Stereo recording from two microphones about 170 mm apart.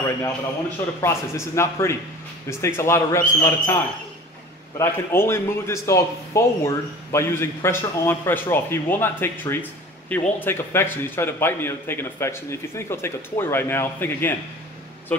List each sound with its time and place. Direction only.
1.0 s speech: 15° left (ahead or behind)